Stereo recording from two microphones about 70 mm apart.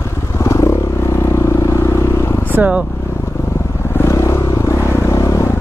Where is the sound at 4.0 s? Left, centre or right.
Left.